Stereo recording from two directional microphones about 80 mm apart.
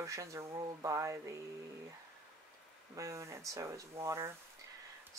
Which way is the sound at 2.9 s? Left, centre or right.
Right.